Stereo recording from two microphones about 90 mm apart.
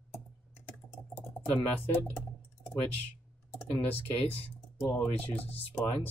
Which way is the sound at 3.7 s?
20° left (ahead or behind).